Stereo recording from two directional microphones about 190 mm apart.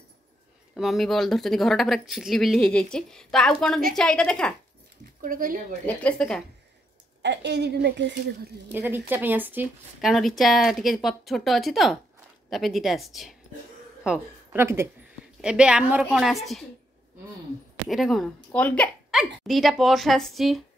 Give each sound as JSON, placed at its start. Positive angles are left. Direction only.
{"t": 0.7, "sound": "speech", "side_deg": 0}
{"t": 5.2, "sound": "speech", "side_deg": -45}
{"t": 6.0, "sound": "speech", "side_deg": 5}
{"t": 7.2, "sound": "a woman's voice", "side_deg": -65}
{"t": 8.7, "sound": "a woman's voice", "side_deg": -10}
{"t": 10.1, "sound": "a woman's voice", "side_deg": 0}
{"t": 17.8, "sound": "speech", "side_deg": 0}